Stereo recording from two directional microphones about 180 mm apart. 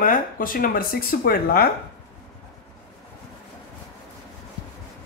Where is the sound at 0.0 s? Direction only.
50° left (ahead or behind).